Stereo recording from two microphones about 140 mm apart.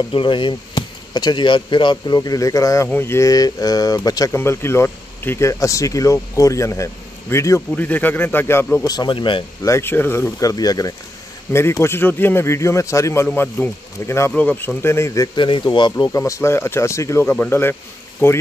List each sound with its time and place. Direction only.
0.1 s speech: 35° left (ahead or behind); by 8.8 s 15° left (ahead or behind)
8.8 s speech: 30° left (ahead or behind)
9.7 s speech: 15° left (ahead or behind)
15.3 s speech: 35° left (ahead or behind)
16.2 s speech: 20° left (ahead or behind)